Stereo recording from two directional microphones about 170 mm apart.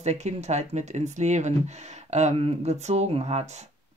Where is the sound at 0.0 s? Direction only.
40° right (ahead or behind).